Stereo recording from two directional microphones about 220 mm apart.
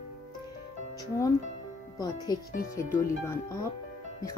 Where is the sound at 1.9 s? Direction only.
15° left (ahead or behind).